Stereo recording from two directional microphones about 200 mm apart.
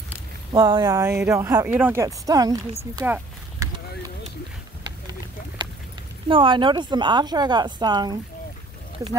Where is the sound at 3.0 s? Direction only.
10° right (ahead or behind).